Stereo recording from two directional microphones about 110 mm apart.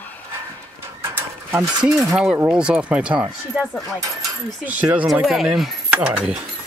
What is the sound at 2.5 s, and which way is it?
Speech, 10° right (ahead or behind).